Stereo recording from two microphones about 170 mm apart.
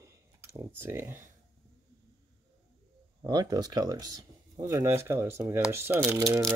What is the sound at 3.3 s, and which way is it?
Speech, 25° right (ahead or behind).